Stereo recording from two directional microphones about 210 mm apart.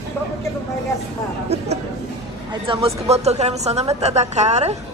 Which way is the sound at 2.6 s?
25° right (ahead or behind).